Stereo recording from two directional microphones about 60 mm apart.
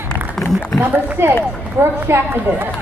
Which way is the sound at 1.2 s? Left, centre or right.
Right.